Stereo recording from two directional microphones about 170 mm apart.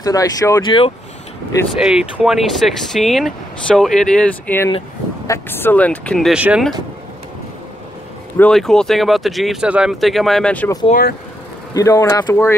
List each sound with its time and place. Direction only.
0.0 s speech: 20° left (ahead or behind)
1.7 s speech: 5° right (ahead or behind)
4.6 s speech: 20° left (ahead or behind); by 6.4 s centre (ahead or behind)
8.4 s speech: 5° left (ahead or behind)
10.9 s speech: 60° left (ahead or behind)
11.7 s speech: 15° left (ahead or behind)